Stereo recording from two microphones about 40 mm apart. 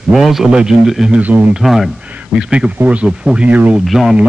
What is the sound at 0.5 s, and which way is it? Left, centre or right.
Speech, right.